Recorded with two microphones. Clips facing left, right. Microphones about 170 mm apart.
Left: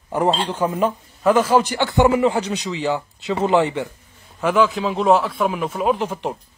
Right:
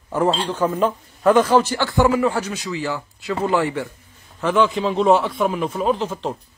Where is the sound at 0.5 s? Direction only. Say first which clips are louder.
Right 1 dB; 10° left (ahead or behind).